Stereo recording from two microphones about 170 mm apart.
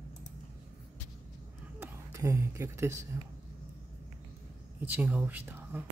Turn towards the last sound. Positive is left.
turn(degrees=-10)  # may be behind; listen again after turning